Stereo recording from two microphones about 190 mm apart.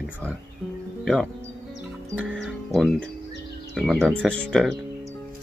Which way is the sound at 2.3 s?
Centre (ahead or behind).